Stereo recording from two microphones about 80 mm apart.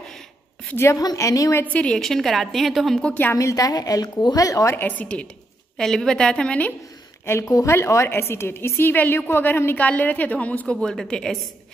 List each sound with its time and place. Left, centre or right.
0.9 s a woman's voice: left
1.6 s a woman's voice: centre
2.0 s a woman's voice: centre
3.3 s a woman's voice: left
4.7 s a woman's voice: left
5.8 s a woman's voice: centre
7.2 s a woman's voice: left; by 11.3 s centre